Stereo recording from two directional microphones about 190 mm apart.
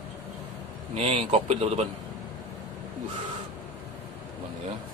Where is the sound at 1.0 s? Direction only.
30° right (ahead or behind).